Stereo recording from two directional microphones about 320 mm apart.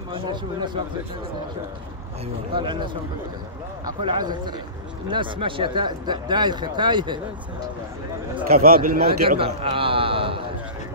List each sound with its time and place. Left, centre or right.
0.1 s speech: centre
2.5 s speech: centre
8.5 s speech: right